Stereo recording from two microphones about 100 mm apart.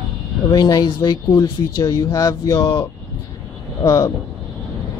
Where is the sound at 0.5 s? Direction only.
45° left (ahead or behind).